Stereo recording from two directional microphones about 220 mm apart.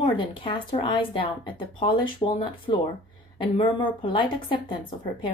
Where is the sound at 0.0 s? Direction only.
25° left (ahead or behind).